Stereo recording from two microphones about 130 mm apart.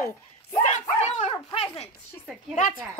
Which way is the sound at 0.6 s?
65° left (ahead or behind).